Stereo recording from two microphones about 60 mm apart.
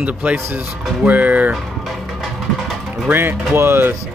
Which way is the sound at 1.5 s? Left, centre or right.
Centre.